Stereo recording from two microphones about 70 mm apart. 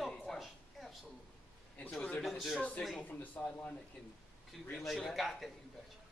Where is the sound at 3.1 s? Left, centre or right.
Left.